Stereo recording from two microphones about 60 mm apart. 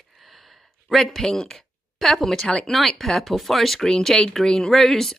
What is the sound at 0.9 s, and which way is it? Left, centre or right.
Speech, centre.